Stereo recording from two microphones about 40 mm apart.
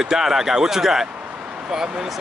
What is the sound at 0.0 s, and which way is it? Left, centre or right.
Speech, centre.